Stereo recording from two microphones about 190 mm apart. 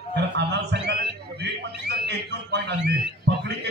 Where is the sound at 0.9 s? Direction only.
55° right (ahead or behind).